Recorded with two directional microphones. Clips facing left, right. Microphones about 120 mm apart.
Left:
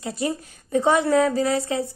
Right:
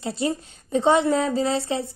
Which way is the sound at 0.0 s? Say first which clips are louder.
Right 1 dB; 25° right (ahead or behind).